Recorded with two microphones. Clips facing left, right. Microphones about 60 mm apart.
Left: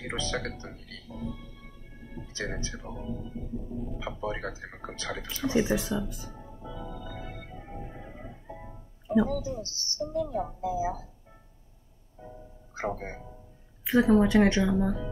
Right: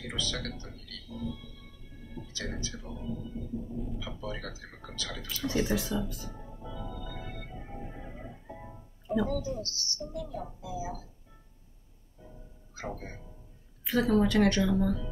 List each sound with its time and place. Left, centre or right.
0.0 s music: left
4.1 s speech: left
5.4 s speech: centre
6.3 s organ: centre
9.6 s speech: left
12.7 s speech: left
13.8 s a woman's voice: left